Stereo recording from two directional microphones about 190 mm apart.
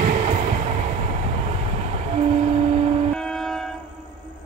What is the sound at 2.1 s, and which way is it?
Vehicle, 35° right (ahead or behind).